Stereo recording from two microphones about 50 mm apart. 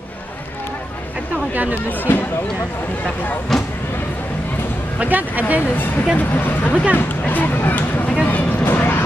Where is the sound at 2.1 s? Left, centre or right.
Left.